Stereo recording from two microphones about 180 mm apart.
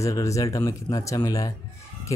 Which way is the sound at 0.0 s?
15° left (ahead or behind).